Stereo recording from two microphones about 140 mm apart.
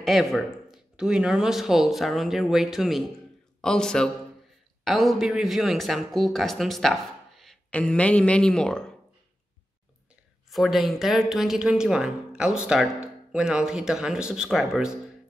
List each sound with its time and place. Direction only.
0.0 s speech: centre (ahead or behind)
10.5 s speech: centre (ahead or behind)